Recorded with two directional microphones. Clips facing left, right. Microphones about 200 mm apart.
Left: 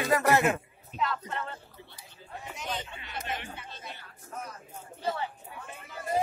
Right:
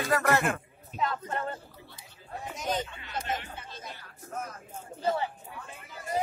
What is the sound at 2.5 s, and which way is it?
Speech, 40° right (ahead or behind).